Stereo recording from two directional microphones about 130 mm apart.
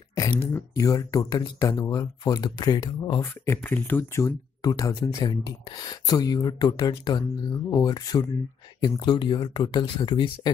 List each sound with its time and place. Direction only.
0.4 s speech: 20° left (ahead or behind)
3.6 s speech: 15° left (ahead or behind); by 10.5 s 35° left (ahead or behind)